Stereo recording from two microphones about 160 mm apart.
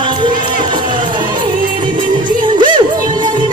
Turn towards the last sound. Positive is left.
turn(degrees=-30)  # may be behind; listen again after turning